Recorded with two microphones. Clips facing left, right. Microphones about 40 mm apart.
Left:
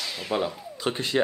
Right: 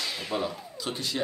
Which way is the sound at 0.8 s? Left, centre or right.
Left.